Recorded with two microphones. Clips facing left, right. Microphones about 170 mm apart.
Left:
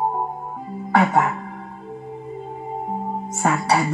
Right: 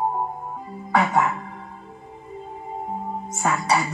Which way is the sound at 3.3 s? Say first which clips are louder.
Left 2 dB; 55° left (ahead or behind).